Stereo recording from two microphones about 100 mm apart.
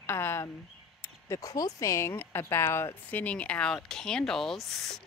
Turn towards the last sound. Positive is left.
turn(degrees=5)  # may be behind; listen again after turning